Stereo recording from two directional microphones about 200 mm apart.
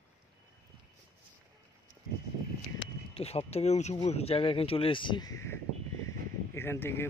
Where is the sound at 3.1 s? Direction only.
30° left (ahead or behind).